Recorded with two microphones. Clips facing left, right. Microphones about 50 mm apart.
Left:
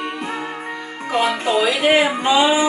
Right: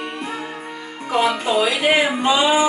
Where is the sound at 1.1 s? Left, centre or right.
Centre.